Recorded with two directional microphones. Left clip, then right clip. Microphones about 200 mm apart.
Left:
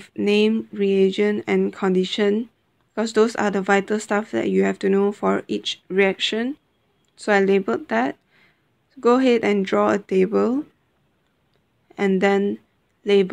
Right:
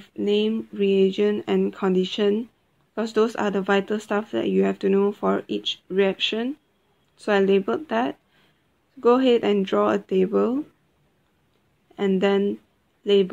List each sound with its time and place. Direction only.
0.0 s speech: 15° left (ahead or behind)
11.9 s speech: 10° left (ahead or behind)